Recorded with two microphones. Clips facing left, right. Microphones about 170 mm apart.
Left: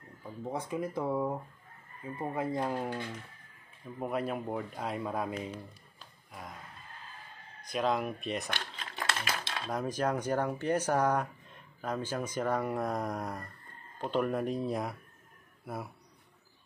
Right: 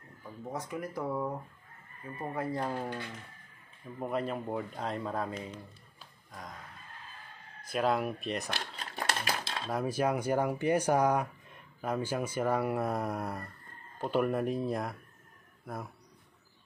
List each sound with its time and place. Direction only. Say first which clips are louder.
0.4 s speech: left 3 dB; 25° left (ahead or behind)
4.0 s speech: even; 5° left (ahead or behind)
7.6 s speech: right 1 dB; 5° right (ahead or behind)
8.5 s dishes: right 1 dB; 35° right (ahead or behind)
9.7 s speech: right 2 dB; 5° right (ahead or behind)